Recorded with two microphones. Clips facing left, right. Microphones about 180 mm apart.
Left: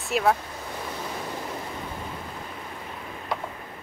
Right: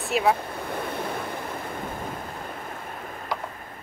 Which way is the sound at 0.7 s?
55° right (ahead or behind).